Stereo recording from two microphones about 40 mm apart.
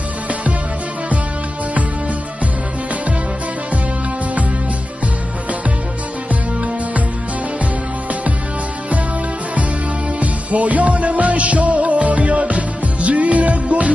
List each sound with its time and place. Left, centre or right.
0.3 s music: right
10.2 s music: right